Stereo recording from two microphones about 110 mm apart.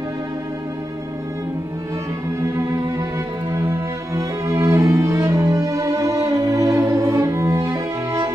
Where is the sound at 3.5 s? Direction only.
25° right (ahead or behind).